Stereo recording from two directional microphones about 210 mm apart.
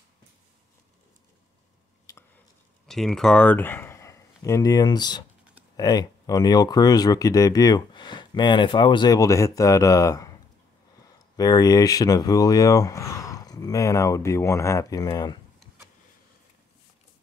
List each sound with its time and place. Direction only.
2.1 s a sound: 15° left (ahead or behind)
2.9 s speech: centre (ahead or behind)
11.3 s speech: 15° left (ahead or behind)